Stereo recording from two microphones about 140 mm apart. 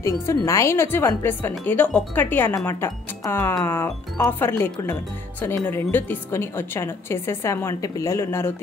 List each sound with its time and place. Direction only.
0.0 s a woman's voice: 20° left (ahead or behind)